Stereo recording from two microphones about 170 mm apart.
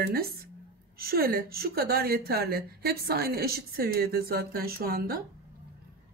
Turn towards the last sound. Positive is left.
turn(degrees=-60)  # may be behind; listen again after turning